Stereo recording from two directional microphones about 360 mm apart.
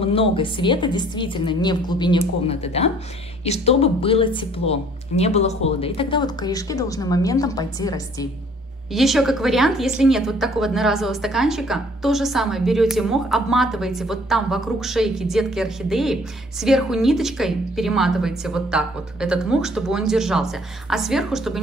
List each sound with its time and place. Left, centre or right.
0.0 s a woman's voice: centre
8.9 s a woman's voice: centre